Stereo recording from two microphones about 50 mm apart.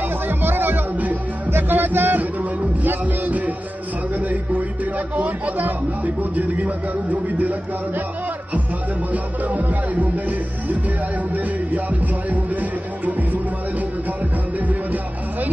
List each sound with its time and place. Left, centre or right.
0.3 s music: right
4.2 s speech: right
9.1 s speech: right
11.3 s speech: right